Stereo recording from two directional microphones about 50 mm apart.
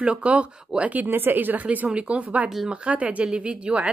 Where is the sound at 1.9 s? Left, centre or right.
Right.